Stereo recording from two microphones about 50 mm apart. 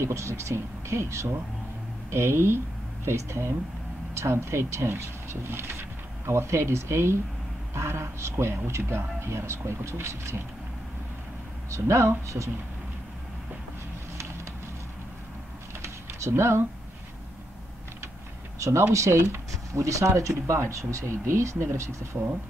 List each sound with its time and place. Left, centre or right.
0.0 s a man's voice: right
4.8 s a man's voice: right
11.7 s speech: right
15.8 s a sound: right
18.6 s speech: right
19.7 s speech: right
21.3 s speech: right